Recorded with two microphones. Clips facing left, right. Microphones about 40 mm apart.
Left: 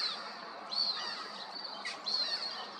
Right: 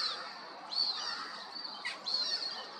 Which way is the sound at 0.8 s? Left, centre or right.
Centre.